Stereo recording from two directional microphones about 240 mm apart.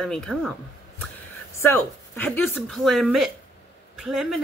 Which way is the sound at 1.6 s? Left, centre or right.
Centre.